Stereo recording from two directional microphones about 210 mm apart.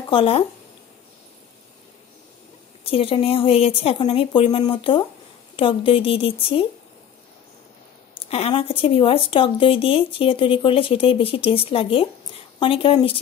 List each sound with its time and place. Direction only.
0.1 s speech: 25° left (ahead or behind)
2.8 s speech: 25° left (ahead or behind)
8.2 s speech: 30° left (ahead or behind)